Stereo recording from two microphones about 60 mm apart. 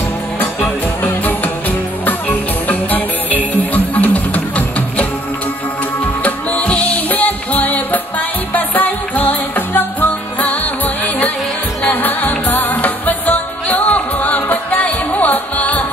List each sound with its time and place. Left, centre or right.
0.4 s music: left
6.2 s music: left
11.8 s music: left